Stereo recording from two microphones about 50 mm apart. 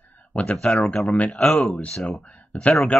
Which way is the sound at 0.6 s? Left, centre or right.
Centre.